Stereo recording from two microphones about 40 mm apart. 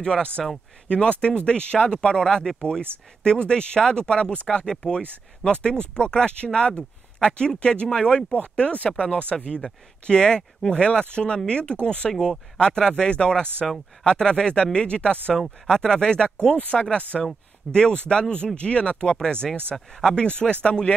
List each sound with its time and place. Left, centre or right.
0.0 s speech: centre
8.4 s speech: left
16.3 s speech: left
17.1 s speech: centre
17.7 s speech: left
19.7 s speech: centre
20.2 s speech: left